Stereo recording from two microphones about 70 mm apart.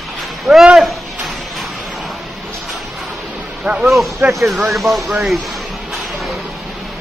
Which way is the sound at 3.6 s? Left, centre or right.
Centre.